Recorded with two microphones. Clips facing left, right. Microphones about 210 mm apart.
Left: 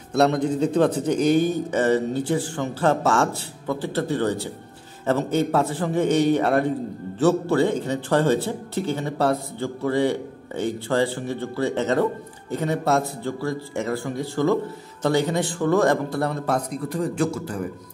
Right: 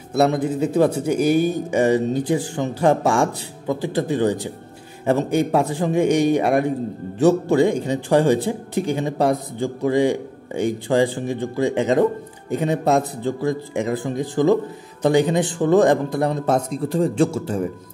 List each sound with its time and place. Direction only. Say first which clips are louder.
0.1 s speech: right 1 dB; 5° right (ahead or behind); by 17.6 s 25° right (ahead or behind)